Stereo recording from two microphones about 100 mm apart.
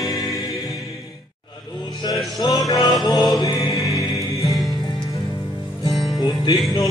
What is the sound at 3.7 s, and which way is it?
Music, 35° left (ahead or behind).